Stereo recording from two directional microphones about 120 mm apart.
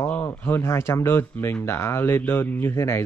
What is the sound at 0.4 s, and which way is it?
Speech, 20° left (ahead or behind).